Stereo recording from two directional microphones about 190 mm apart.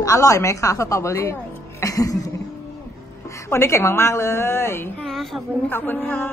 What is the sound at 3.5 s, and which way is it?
Speech, 15° left (ahead or behind).